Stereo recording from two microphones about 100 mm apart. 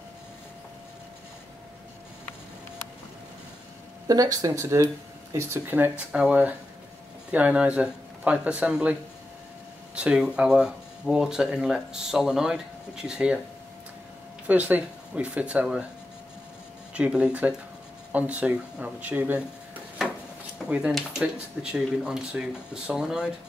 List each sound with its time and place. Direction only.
4.1 s speech: 40° right (ahead or behind); by 8.9 s 10° right (ahead or behind)
9.9 s speech: 10° right (ahead or behind)
14.5 s speech: 15° right (ahead or behind)
16.9 s speech: 10° right (ahead or behind)
20.5 s speech: 10° right (ahead or behind)